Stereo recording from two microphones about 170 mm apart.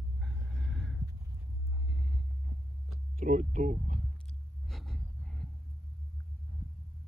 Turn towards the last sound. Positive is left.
turn(degrees=0)  # may be behind; listen again after turning